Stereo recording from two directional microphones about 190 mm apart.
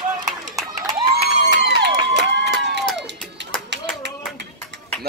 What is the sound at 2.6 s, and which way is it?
Music, 65° right (ahead or behind).